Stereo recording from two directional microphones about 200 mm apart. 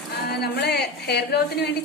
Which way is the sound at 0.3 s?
55° left (ahead or behind).